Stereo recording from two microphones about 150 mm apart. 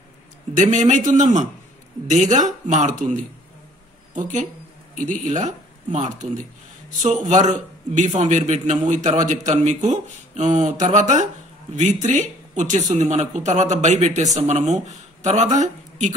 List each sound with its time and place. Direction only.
0.6 s a man's voice: 55° right (ahead or behind)